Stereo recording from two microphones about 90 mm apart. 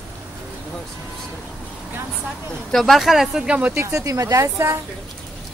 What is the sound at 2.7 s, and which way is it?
Speech, centre (ahead or behind).